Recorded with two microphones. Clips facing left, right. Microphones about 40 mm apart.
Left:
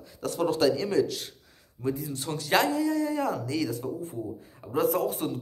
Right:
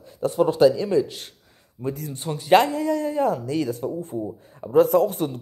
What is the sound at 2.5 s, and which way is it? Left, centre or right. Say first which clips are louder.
Speech: right 6 dB; right.